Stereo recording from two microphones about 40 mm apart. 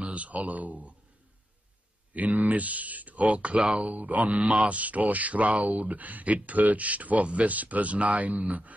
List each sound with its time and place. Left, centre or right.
0.0 s speech: right
2.1 s speech: right
3.9 s speech: right